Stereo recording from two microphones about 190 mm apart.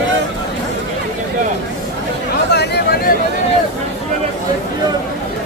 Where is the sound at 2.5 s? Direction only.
60° left (ahead or behind).